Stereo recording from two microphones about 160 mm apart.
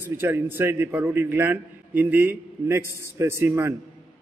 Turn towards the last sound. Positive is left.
turn(degrees=-15)  # may be behind; listen again after turning